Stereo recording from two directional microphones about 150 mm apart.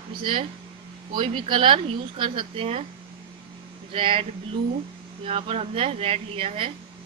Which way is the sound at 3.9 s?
35° right (ahead or behind).